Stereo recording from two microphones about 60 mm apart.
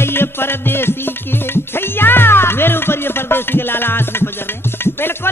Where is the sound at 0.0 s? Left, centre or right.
Left.